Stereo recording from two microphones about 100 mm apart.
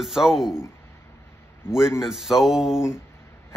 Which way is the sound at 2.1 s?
5° right (ahead or behind).